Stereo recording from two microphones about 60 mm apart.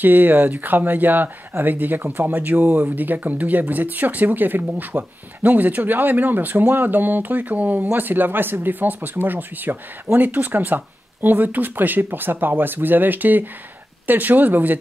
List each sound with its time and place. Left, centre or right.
0.0 s speech: right